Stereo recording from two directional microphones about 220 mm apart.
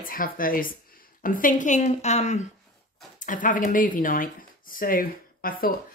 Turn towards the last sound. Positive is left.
turn(degrees=40)  # may be behind; listen again after turning